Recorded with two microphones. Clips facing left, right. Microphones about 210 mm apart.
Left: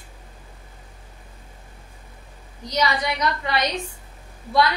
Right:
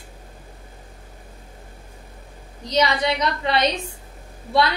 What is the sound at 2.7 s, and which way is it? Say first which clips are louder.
A woman's voice: right 3 dB; 25° right (ahead or behind).